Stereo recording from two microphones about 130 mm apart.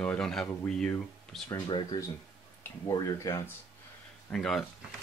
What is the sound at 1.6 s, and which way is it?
Speech, 40° left (ahead or behind).